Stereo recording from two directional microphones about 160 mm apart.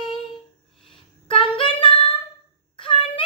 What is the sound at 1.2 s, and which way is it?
Child singing, 35° left (ahead or behind).